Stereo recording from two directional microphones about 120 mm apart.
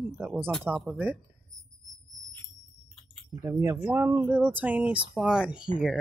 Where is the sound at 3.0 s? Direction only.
5° left (ahead or behind).